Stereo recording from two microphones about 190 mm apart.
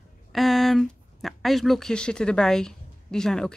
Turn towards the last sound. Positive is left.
turn(degrees=5)  # may be behind; listen again after turning